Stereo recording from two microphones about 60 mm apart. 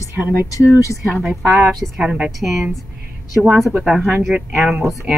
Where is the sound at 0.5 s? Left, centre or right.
Left.